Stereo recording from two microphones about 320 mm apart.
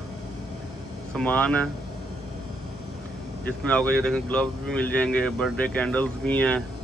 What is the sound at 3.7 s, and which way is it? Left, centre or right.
Speech, centre.